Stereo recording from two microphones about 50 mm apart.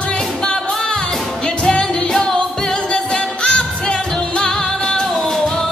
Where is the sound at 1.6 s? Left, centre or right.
Centre.